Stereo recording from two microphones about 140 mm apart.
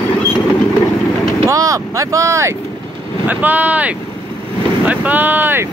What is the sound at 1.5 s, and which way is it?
Speech, 25° right (ahead or behind).